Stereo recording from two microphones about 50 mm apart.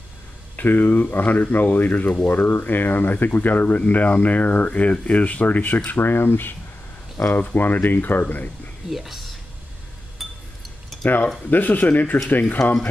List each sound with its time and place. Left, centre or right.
0.6 s speech: left
5.9 s speech: left
7.2 s speech: left
8.9 s speech: centre
10.2 s chink: centre
10.9 s a sound: centre
11.5 s speech: left